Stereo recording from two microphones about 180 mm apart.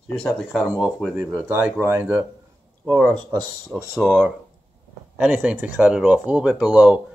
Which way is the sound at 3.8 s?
5° right (ahead or behind).